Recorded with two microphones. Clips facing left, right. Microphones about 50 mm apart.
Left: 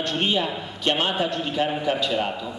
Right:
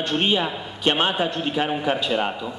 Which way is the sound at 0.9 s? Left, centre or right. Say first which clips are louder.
Right 2 dB; right.